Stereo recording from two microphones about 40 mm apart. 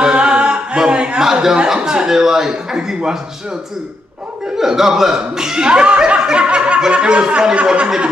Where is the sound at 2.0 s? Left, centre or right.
Centre.